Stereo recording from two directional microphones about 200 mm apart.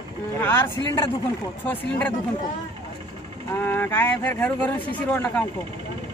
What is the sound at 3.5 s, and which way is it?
Speech, 10° left (ahead or behind).